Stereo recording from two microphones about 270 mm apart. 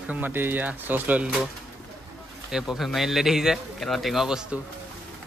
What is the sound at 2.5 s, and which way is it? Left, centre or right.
Speech, centre.